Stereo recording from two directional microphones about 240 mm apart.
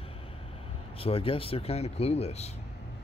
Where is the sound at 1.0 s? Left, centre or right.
Left.